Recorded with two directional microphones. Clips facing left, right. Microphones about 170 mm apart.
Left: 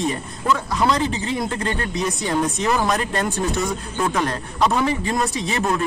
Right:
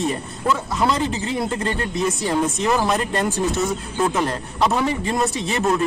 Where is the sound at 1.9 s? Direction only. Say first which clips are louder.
Right 2 dB; centre (ahead or behind).